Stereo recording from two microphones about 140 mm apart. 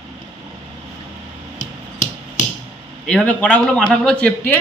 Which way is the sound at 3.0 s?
10° left (ahead or behind).